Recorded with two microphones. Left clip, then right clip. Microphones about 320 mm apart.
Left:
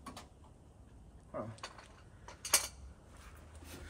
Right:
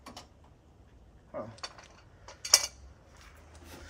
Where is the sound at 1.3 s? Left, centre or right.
Right.